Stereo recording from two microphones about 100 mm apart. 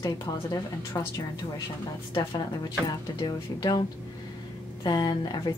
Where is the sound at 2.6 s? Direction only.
40° left (ahead or behind).